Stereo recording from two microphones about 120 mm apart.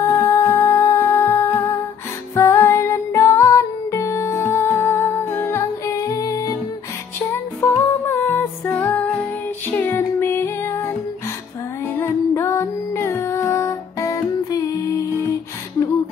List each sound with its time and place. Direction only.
0.1 s music: 25° left (ahead or behind)
7.2 s music: 20° left (ahead or behind)